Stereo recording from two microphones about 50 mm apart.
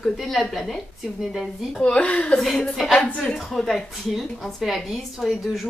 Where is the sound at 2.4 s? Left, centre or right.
Centre.